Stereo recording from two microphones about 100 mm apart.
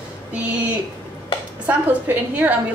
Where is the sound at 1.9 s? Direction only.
15° right (ahead or behind).